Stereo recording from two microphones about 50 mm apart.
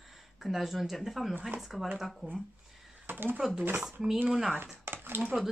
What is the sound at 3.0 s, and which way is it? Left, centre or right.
Speech, right.